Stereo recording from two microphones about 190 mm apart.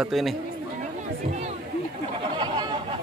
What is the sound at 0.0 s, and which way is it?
Speech, centre (ahead or behind).